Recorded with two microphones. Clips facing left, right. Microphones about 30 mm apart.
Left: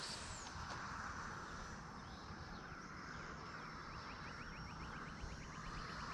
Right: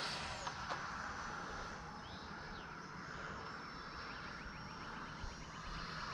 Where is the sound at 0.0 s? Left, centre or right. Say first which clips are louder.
Right 7 dB; right.